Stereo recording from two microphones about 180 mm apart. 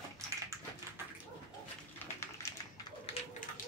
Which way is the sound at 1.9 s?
15° left (ahead or behind).